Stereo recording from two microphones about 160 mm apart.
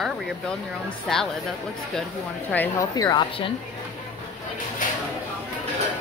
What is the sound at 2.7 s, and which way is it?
Speech, 20° left (ahead or behind).